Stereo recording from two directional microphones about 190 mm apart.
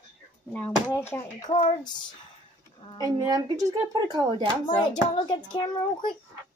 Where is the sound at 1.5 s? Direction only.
35° left (ahead or behind).